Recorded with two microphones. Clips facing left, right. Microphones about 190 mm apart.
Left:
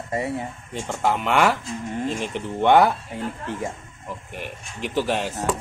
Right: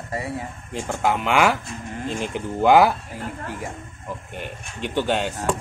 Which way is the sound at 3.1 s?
25° left (ahead or behind).